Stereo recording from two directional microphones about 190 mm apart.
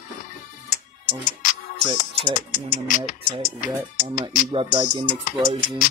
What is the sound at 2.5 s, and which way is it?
Speech, 40° left (ahead or behind).